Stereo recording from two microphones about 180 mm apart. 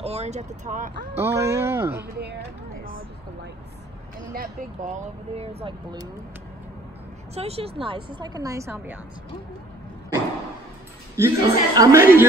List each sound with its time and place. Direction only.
0.0 s speech: 35° right (ahead or behind)
1.1 s a woman's voice: 15° right (ahead or behind)
2.0 s speech: 65° right (ahead or behind)
4.8 s speech: 35° right (ahead or behind)
7.3 s a woman's voice: 35° right (ahead or behind); by 9.0 s 10° right (ahead or behind)
11.1 s a woman's voice: 15° right (ahead or behind)